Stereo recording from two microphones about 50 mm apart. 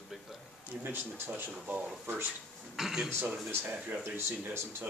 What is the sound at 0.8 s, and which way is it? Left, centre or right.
Speech, right.